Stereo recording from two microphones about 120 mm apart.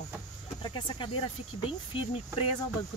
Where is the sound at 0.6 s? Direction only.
45° left (ahead or behind).